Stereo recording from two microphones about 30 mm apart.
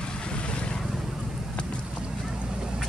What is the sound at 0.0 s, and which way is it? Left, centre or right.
Vehicle, left.